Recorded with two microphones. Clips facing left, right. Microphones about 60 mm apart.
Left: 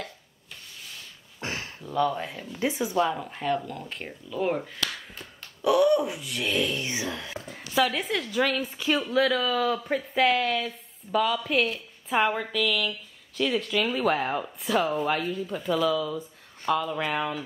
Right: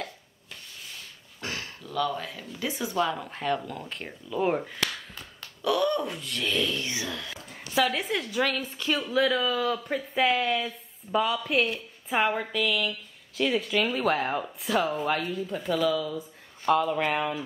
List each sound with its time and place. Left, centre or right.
1.4 s a sound: left
2.6 s speech: left
3.2 s a woman's voice: centre
5.6 s speech: centre
6.9 s speech: left
7.5 s a woman's voice: centre
16.2 s a sound: centre
16.9 s a woman's voice: centre